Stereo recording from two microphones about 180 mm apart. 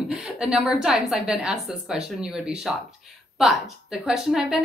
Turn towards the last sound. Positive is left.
turn(degrees=0)  # may be behind; listen again after turning